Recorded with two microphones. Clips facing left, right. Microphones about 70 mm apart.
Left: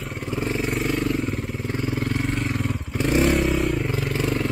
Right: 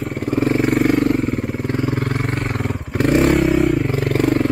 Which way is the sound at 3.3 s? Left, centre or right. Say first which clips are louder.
Right 6 dB; centre.